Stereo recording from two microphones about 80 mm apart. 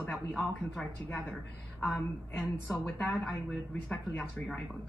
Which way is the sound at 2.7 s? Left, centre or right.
Centre.